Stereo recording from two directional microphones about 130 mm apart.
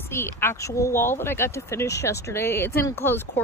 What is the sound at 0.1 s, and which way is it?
Speech, 20° left (ahead or behind).